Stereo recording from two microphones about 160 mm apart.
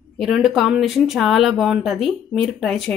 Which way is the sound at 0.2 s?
Centre (ahead or behind).